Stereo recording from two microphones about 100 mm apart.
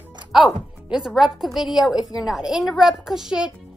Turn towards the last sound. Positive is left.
turn(degrees=-5)  # may be behind; listen again after turning